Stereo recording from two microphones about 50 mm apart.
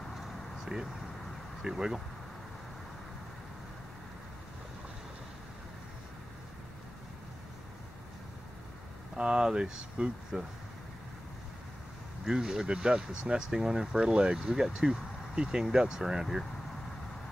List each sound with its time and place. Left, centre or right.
0.1 s a sound: centre
1.6 s speech: centre
9.1 s speech: centre
12.3 s speech: centre